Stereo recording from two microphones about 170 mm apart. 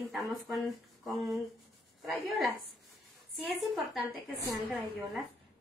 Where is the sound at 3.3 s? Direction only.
Centre (ahead or behind).